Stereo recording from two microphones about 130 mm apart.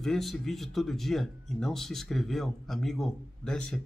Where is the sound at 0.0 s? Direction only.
Centre (ahead or behind).